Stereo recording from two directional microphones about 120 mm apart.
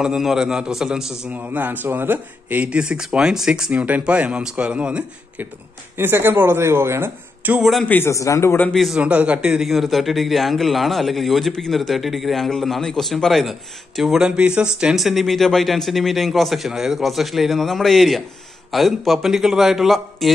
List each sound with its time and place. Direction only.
0.0 s speech: 5° right (ahead or behind)
7.8 s a man's voice: 15° left (ahead or behind)
8.1 s a man's voice: 25° left (ahead or behind)
8.7 s speech: centre (ahead or behind)
9.0 s speech: 10° right (ahead or behind)